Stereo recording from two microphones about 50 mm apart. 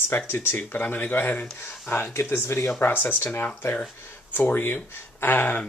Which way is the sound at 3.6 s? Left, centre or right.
Left.